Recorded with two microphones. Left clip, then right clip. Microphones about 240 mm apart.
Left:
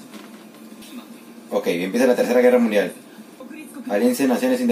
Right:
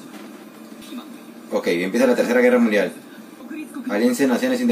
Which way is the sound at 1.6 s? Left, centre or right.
Centre.